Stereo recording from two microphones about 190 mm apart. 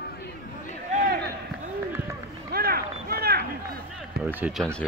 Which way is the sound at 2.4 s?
55° right (ahead or behind).